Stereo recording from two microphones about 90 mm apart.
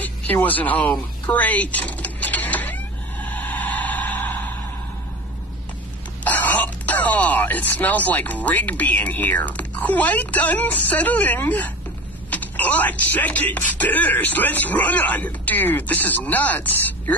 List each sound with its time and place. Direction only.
0.0 s speech: 20° left (ahead or behind)
1.2 s vehicle: 15° left (ahead or behind)
6.2 s speech: 20° left (ahead or behind)